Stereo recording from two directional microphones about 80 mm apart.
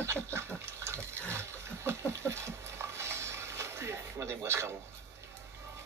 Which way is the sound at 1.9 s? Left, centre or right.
Right.